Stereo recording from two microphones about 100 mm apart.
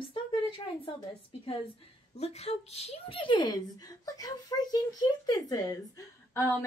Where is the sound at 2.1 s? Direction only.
90° left.